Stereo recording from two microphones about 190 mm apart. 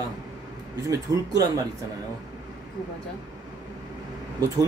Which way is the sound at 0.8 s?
20° right (ahead or behind).